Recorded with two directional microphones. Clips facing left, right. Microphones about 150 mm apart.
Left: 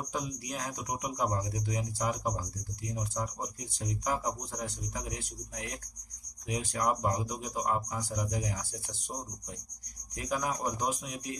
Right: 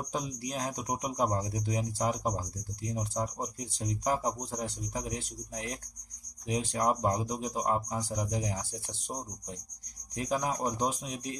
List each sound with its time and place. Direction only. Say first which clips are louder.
0.1 s speech: right 3 dB; 30° right (ahead or behind)
10.1 s speech: right 2 dB; 25° right (ahead or behind)